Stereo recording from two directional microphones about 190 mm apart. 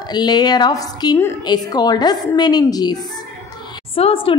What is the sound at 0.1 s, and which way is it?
A woman's voice, 20° left (ahead or behind).